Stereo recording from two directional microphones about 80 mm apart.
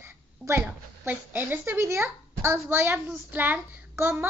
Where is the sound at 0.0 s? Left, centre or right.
Right.